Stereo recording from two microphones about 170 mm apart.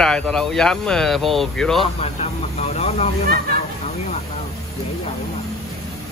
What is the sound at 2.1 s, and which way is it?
Vehicle, 40° left (ahead or behind).